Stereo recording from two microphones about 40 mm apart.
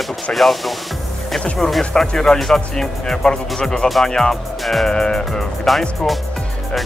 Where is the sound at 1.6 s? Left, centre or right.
Centre.